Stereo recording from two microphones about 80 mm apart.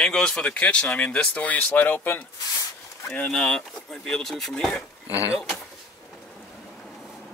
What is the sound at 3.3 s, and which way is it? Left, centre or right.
Speech, centre.